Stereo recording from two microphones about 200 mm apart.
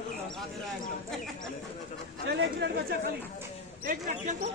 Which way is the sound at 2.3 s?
65° right (ahead or behind).